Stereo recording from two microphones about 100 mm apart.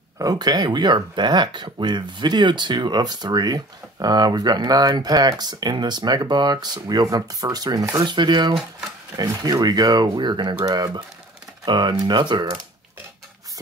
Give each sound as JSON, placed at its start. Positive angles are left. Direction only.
{"t": 0.2, "sound": "speech", "side_deg": -40}